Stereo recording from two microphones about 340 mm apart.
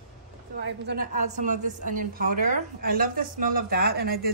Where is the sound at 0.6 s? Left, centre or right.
Right.